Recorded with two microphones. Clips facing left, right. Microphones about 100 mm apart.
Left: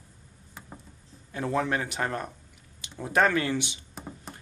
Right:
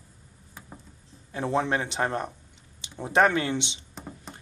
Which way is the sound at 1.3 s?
25° right (ahead or behind).